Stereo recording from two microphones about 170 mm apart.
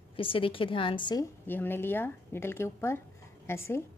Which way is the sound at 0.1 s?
30° left (ahead or behind).